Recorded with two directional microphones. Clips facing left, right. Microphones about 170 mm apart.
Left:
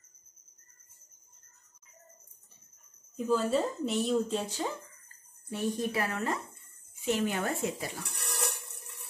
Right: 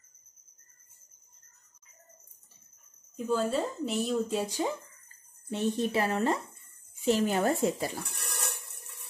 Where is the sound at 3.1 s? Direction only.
Centre (ahead or behind).